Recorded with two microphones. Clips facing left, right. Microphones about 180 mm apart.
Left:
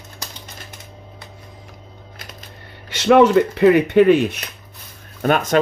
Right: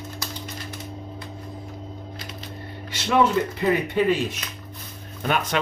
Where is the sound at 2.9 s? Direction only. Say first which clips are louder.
Left 8 dB; 75° left (ahead or behind).